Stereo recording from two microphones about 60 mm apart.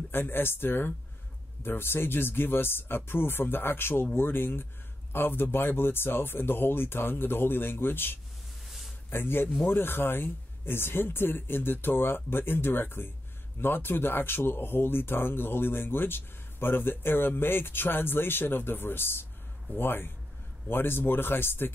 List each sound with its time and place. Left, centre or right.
0.1 s speech: left
8.6 s a sound: centre
9.1 s speech: left